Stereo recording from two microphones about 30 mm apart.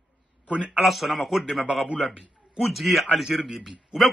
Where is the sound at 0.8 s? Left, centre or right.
Centre.